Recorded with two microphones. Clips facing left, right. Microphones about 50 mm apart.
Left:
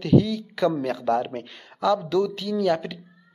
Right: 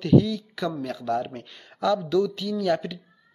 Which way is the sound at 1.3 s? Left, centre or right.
Centre.